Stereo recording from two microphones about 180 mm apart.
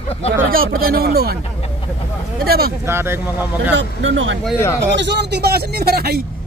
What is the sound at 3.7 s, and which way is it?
Speech, 90° right.